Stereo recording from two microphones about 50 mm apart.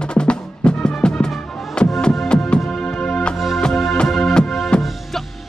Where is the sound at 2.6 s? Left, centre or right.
Centre.